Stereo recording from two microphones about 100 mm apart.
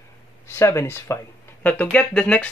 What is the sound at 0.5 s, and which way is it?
Speech, 30° left (ahead or behind).